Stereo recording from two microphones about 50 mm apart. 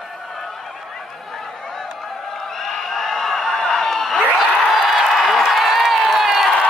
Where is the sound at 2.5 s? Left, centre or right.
Centre.